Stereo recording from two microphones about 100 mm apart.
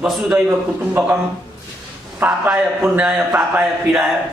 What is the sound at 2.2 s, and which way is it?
A man's voice, 15° right (ahead or behind).